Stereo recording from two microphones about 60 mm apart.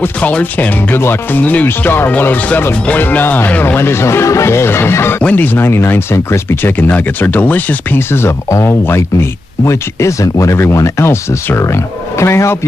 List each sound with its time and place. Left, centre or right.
0.2 s speech: left
6.5 s speech: left
8.5 s speech: left
8.8 s speech: left
10.6 s speech: left
11.1 s speech: left